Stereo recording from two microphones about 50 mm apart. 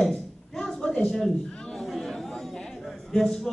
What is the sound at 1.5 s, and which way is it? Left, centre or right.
Chatter, centre.